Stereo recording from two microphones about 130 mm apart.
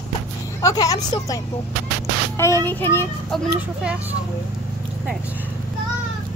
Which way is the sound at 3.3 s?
Centre (ahead or behind).